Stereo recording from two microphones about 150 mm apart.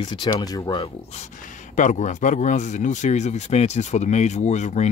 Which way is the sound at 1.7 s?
55° left (ahead or behind).